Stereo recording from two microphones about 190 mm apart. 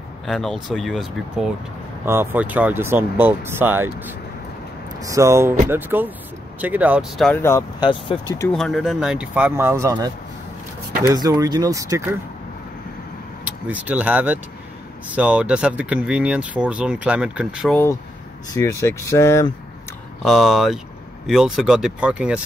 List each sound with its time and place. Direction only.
0.3 s speech: centre (ahead or behind)
7.8 s speech: 25° left (ahead or behind)
8.4 s speech: 5° left (ahead or behind); by 10.1 s 20° right (ahead or behind)
11.1 s speech: 20° right (ahead or behind)
13.5 s speech: 10° right (ahead or behind)
18.5 s speech: 15° left (ahead or behind)
20.2 s speech: centre (ahead or behind)